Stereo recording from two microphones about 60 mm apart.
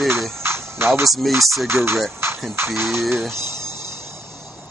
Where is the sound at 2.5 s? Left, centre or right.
Right.